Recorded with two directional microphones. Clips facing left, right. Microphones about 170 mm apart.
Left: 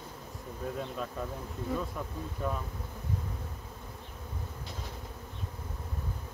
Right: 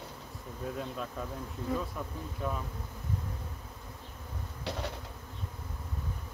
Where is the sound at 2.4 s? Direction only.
5° right (ahead or behind).